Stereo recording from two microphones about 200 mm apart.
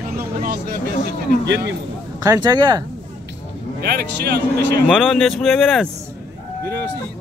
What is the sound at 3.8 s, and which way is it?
Speech, 50° right (ahead or behind).